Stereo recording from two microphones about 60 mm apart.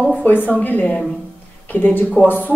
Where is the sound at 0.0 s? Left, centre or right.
Left.